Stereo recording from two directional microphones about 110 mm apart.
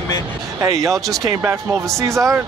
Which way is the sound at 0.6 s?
30° right (ahead or behind).